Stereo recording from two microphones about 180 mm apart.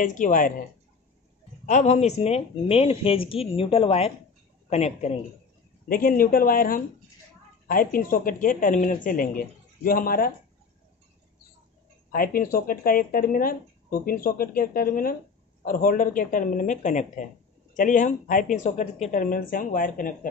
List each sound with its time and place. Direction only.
0.0 s speech: 45° left (ahead or behind)
1.7 s speech: 40° left (ahead or behind)
5.9 s speech: 50° left (ahead or behind)
12.1 s speech: 50° left (ahead or behind)